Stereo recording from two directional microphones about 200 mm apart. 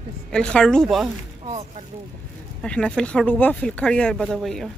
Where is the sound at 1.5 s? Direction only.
35° right (ahead or behind).